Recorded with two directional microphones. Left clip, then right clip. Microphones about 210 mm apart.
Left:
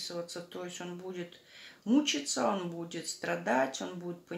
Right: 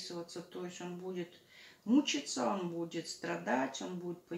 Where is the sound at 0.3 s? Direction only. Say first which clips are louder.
Left 3 dB; 40° left (ahead or behind).